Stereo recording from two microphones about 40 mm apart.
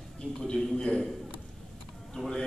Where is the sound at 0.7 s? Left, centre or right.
Centre.